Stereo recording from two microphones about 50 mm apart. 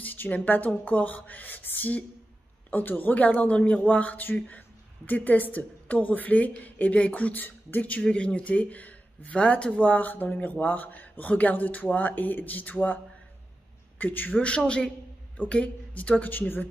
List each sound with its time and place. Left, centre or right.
0.0 s speech: left
15.3 s speech: left